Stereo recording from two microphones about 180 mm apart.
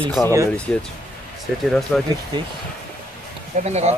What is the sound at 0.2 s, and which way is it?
Speech, centre (ahead or behind).